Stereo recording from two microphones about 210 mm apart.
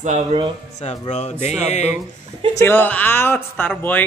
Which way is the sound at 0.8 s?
30° left (ahead or behind).